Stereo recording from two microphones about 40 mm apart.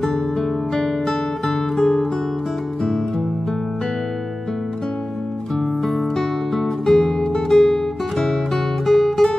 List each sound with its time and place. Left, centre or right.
0.0 s music: centre
5.9 s music: centre
8.8 s guitar: centre